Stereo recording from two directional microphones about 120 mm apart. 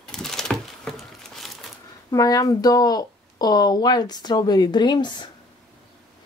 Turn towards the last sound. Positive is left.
turn(degrees=40)  # may be behind; listen again after turning